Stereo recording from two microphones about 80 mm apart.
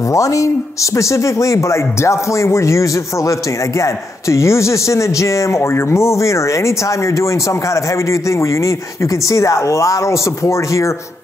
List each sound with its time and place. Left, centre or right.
0.1 s speech: left